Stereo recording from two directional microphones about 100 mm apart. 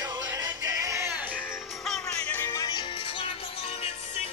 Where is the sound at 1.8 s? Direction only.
5° left (ahead or behind).